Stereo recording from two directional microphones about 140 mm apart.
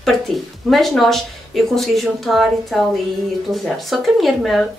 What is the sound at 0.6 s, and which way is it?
A woman's voice, centre (ahead or behind).